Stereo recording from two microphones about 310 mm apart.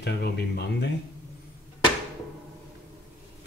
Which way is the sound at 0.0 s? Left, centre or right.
Left.